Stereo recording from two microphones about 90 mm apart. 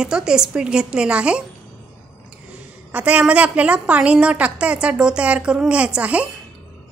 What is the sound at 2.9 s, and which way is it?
A woman's voice, 15° right (ahead or behind).